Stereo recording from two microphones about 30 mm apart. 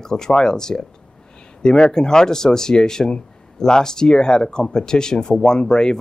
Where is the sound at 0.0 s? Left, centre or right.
Centre.